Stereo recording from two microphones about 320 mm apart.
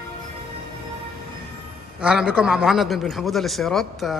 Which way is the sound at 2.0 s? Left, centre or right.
Centre.